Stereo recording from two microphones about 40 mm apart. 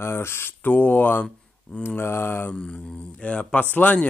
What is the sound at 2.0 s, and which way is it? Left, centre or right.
Mantra, left.